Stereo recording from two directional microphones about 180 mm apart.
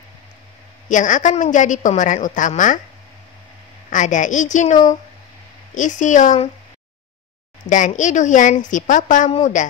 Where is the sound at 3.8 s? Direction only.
45° left (ahead or behind).